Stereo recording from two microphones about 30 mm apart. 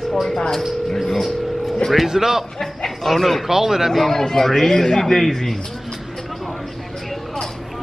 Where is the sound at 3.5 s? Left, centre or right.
Centre.